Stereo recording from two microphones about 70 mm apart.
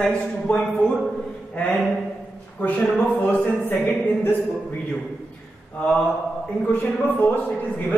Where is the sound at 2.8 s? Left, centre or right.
Centre.